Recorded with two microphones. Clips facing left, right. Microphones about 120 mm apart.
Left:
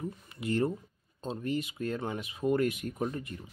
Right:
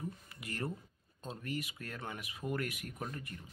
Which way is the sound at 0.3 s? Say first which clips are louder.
Left 14 dB; 25° left (ahead or behind).